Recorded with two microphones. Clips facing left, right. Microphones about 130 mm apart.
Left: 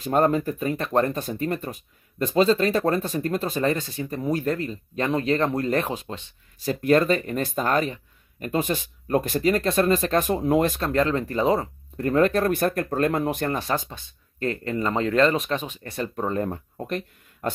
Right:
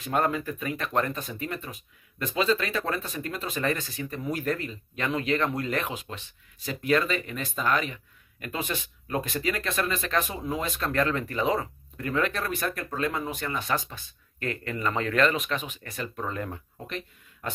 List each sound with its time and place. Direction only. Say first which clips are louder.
0.0 s speech: left 6 dB; 40° left (ahead or behind)
6.6 s speech: left 6 dB; 45° left (ahead or behind)
10.3 s speech: left 10 dB; 60° left (ahead or behind)
10.8 s speech: left 4 dB; 30° left (ahead or behind); by 13.6 s 50° left (ahead or behind)
13.6 s speech: left 3 dB; 30° left (ahead or behind)
16.7 s a sound: left 7 dB; 50° left (ahead or behind)